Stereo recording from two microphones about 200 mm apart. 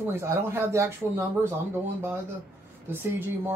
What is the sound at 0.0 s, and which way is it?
Speech, 10° right (ahead or behind).